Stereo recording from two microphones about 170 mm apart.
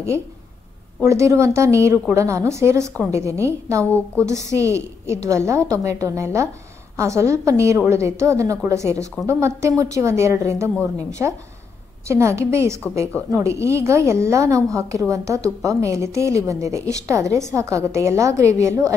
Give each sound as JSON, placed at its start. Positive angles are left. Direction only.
{"t": 1.0, "sound": "a woman's voice", "side_deg": -15}